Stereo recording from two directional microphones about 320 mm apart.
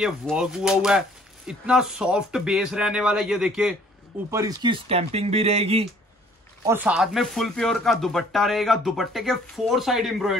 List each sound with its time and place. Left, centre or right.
0.0 s speech: centre
6.6 s speech: centre